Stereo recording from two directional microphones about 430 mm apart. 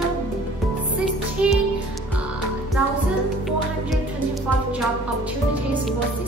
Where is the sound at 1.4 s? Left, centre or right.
Centre.